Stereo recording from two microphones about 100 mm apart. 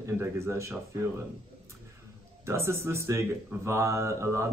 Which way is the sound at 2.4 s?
25° right (ahead or behind).